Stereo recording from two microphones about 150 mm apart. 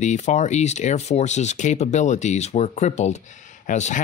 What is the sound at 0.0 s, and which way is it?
Speech, 50° left (ahead or behind).